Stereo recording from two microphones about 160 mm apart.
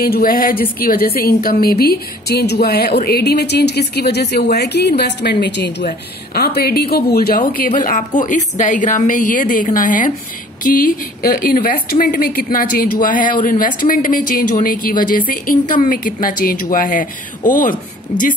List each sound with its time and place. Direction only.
0.0 s a woman's voice: 65° left (ahead or behind)